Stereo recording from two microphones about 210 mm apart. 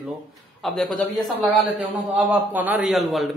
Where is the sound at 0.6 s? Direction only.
Centre (ahead or behind).